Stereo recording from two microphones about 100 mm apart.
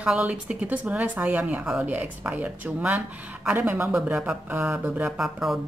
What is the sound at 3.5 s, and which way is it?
Speech, 20° right (ahead or behind).